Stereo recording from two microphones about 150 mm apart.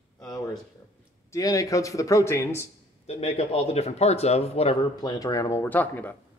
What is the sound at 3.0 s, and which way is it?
Speech, 45° left (ahead or behind).